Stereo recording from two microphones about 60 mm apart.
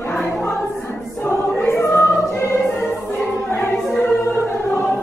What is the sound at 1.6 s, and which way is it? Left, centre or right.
Choir, left.